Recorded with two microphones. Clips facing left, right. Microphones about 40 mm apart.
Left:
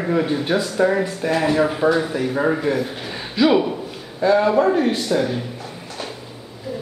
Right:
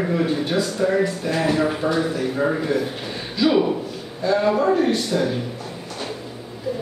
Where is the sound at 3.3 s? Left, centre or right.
Centre.